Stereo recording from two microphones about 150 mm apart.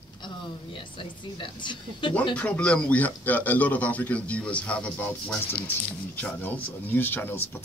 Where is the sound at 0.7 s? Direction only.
35° left (ahead or behind).